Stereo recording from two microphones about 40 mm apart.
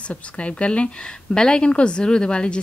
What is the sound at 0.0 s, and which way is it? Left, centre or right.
A woman's voice, left.